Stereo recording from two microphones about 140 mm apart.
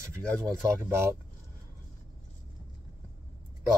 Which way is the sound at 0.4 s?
20° right (ahead or behind).